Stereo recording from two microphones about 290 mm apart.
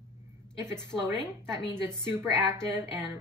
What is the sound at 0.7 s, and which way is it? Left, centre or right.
A woman's voice, centre.